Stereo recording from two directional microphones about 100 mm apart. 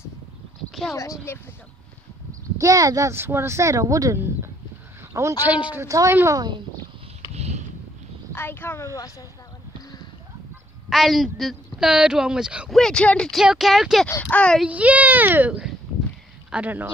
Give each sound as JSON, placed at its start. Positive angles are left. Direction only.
{"t": 1.3, "sound": "speech", "side_deg": 25}
{"t": 2.5, "sound": "speech", "side_deg": -35}
{"t": 5.4, "sound": "a child's voice", "side_deg": -15}
{"t": 5.8, "sound": "speech", "side_deg": -30}
{"t": 8.3, "sound": "speech", "side_deg": 20}
{"t": 10.9, "sound": "speech", "side_deg": 0}
{"t": 12.7, "sound": "speech", "side_deg": 5}
{"t": 13.3, "sound": "speech", "side_deg": -5}
{"t": 14.3, "sound": "speech", "side_deg": 10}
{"t": 14.6, "sound": "a child's voice", "side_deg": -15}